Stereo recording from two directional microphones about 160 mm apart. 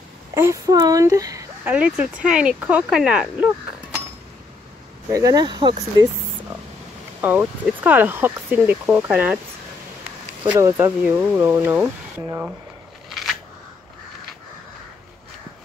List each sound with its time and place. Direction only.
0.3 s a child's voice: 15° right (ahead or behind)
1.6 s speech: 10° right (ahead or behind)
5.1 s speech: 20° right (ahead or behind)
7.2 s speech: 10° right (ahead or behind)
10.6 s speech: 15° right (ahead or behind)
13.1 s scissors: centre (ahead or behind)